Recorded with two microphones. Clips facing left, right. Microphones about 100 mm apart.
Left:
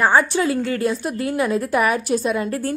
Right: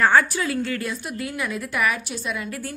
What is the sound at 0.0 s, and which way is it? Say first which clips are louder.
A woman's voice: left 2 dB; 20° left (ahead or behind).